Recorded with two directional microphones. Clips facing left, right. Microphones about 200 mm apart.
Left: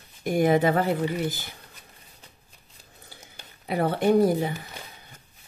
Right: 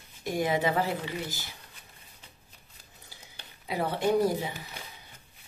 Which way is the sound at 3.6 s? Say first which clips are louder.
Left 5 dB; 55° left (ahead or behind).